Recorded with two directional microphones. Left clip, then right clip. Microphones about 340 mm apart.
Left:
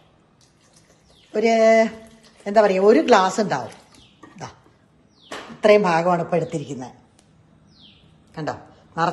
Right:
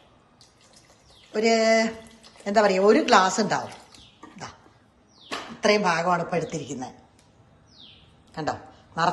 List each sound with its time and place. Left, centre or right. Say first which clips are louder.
1.3 s a woman's voice: left 5 dB; centre
5.6 s a woman's voice: left 6 dB; centre
8.3 s a sound: left 1 dB; centre